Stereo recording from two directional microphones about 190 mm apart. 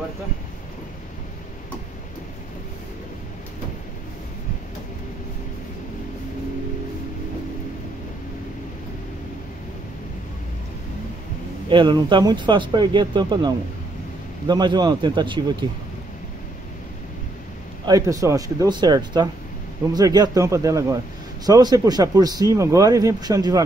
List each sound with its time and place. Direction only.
11.7 s speech: 25° right (ahead or behind)
17.8 s a man's voice: 20° right (ahead or behind)